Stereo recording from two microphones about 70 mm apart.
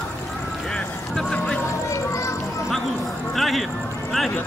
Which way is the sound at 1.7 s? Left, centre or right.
Left.